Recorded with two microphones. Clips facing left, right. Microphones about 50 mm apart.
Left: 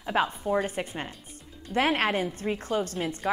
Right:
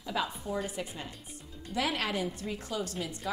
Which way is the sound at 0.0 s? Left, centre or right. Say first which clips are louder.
Left 7 dB; left.